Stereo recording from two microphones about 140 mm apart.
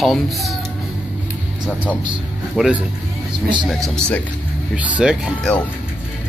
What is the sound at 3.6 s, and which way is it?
Speech, centre (ahead or behind).